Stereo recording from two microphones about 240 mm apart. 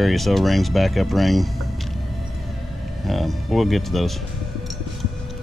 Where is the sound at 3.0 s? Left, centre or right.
Centre.